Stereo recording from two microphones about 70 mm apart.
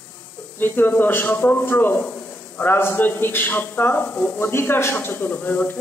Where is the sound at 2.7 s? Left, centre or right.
Left.